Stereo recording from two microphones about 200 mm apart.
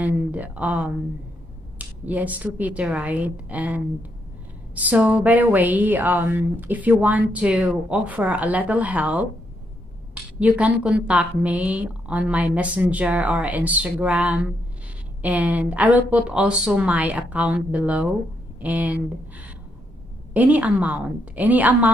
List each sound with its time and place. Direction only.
0.0 s a woman's voice: 5° right (ahead or behind)
10.4 s a woman's voice: 5° right (ahead or behind)